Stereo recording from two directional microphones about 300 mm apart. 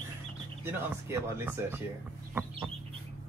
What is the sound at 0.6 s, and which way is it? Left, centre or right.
Speech, centre.